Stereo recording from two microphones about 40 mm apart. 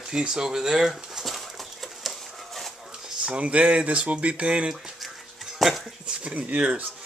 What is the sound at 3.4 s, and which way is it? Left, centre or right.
Speech, right.